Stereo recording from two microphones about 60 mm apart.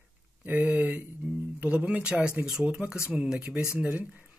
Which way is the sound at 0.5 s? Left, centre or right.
Right.